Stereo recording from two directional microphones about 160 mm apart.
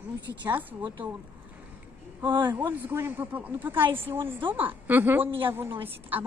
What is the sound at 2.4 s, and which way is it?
Speech, 10° right (ahead or behind).